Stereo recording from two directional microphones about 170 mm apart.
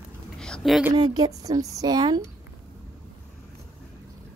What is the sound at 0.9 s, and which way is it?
Speech, 25° right (ahead or behind).